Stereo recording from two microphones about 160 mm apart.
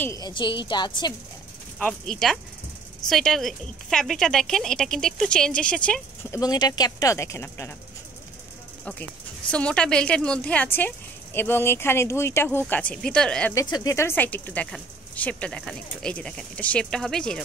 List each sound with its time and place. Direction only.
0.0 s speech: 20° left (ahead or behind)
0.3 s speech: 30° left (ahead or behind)
1.8 s speech: 5° left (ahead or behind)
6.3 s speech: 25° left (ahead or behind)
9.5 s speech: 5° left (ahead or behind)
13.6 s speech: 20° left (ahead or behind); by 17.4 s 5° left (ahead or behind)